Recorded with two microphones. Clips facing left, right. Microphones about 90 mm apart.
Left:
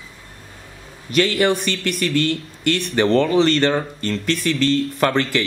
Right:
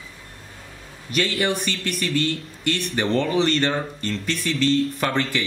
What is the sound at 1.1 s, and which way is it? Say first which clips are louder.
Speech: left 6 dB; 90° left.